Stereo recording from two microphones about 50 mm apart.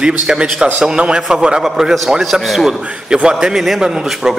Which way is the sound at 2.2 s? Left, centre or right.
Centre.